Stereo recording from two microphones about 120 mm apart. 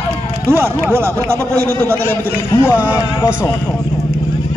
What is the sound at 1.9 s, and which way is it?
Speech, 15° left (ahead or behind).